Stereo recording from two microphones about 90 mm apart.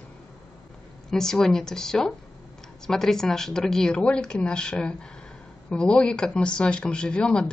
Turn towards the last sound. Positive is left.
turn(degrees=10)  # may be behind; listen again after turning